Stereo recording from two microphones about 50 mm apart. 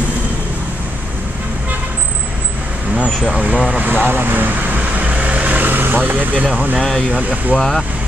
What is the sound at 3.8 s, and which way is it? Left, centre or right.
Vehicle, right.